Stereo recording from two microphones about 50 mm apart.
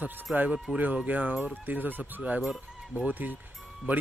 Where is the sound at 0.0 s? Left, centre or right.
Right.